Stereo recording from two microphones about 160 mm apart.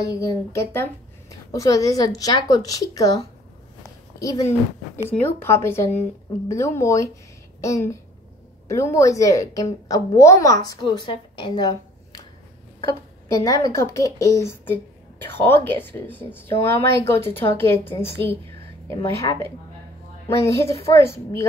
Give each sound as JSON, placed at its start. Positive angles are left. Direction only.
{"t": 0.1, "sound": "a woman's voice", "side_deg": 20}
{"t": 13.3, "sound": "a woman's voice", "side_deg": 20}